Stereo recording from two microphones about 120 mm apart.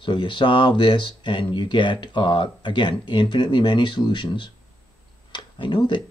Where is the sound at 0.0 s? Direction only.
45° left (ahead or behind).